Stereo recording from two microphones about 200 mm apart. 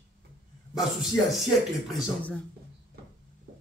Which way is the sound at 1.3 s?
Centre (ahead or behind).